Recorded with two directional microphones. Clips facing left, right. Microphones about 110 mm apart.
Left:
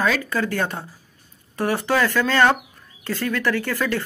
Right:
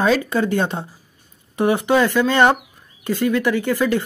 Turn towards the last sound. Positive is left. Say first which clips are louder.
# right 5 dB
turn(degrees=-15)  # may be behind; listen again after turning